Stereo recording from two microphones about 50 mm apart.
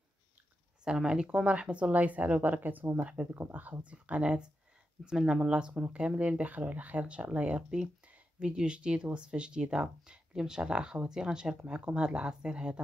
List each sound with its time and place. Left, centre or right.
0.8 s speech: centre; by 3.0 s right
3.0 s speech: right
3.3 s speech: right